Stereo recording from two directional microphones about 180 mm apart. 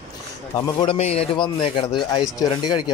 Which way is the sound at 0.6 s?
25° left (ahead or behind).